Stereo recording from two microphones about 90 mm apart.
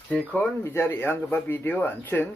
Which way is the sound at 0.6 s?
30° left (ahead or behind).